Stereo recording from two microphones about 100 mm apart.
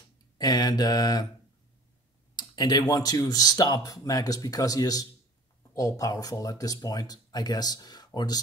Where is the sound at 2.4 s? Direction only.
45° left (ahead or behind).